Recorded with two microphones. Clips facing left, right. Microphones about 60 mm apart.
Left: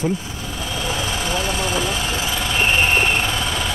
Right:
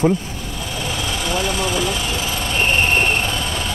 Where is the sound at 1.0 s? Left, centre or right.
Right.